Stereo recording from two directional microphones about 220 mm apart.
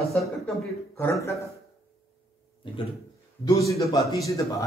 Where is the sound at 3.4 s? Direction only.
15° left (ahead or behind).